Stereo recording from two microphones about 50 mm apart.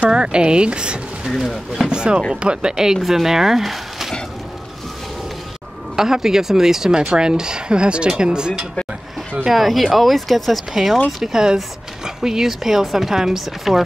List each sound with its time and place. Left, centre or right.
0.0 s speech: centre
5.9 s speech: centre
9.5 s speech: centre